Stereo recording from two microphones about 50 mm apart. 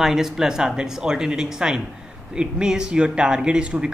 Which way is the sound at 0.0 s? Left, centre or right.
Centre.